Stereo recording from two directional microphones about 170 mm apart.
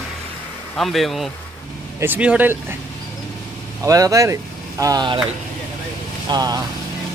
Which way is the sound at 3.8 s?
20° right (ahead or behind).